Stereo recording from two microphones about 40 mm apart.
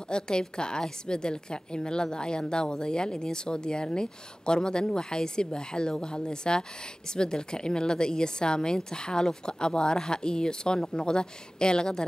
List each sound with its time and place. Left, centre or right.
0.1 s a woman's voice: centre